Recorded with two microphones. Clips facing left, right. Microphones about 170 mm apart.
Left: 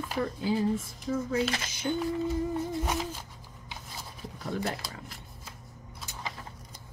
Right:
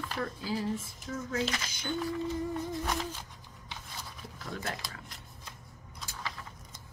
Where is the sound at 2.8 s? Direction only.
10° left (ahead or behind).